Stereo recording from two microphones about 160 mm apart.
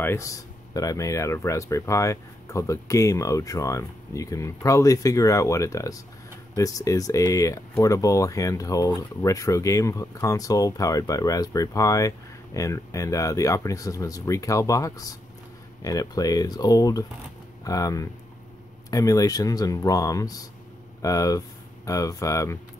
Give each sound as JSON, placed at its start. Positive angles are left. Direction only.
{"t": 0.0, "sound": "speech", "side_deg": 15}